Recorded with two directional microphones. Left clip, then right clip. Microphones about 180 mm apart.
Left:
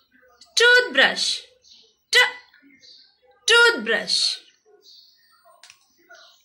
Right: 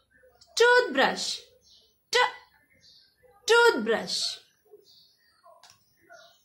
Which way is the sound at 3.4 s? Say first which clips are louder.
Left 5 dB; 20° right (ahead or behind).